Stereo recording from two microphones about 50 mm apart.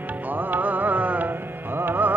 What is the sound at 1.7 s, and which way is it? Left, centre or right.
Music, right.